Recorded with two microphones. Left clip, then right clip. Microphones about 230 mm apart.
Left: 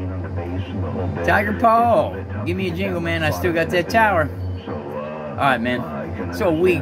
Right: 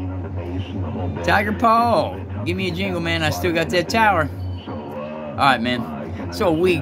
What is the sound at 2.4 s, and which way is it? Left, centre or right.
Speech, right.